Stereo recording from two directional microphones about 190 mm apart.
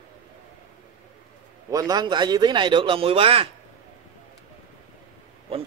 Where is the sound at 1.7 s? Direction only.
20° right (ahead or behind).